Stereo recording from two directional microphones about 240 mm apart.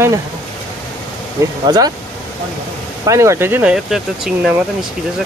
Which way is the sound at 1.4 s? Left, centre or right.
Centre.